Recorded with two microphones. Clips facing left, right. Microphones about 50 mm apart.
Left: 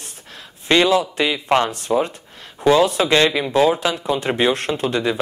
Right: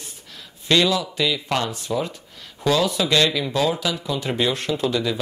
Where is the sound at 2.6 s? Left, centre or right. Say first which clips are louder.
Left 5 dB; left.